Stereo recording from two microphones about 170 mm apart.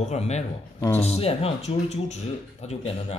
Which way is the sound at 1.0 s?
35° left (ahead or behind).